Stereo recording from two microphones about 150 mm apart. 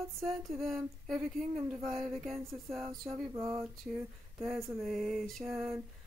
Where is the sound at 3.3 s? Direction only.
20° right (ahead or behind).